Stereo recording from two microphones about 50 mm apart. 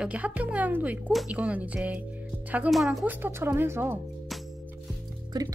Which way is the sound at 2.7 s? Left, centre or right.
Centre.